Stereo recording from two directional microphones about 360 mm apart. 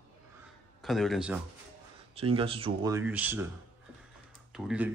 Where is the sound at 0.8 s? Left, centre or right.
Centre.